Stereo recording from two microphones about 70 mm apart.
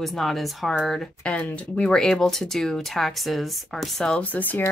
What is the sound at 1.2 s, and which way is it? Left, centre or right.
Speech, centre.